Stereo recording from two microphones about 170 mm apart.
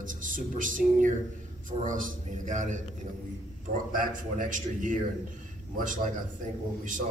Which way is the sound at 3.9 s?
50° right (ahead or behind).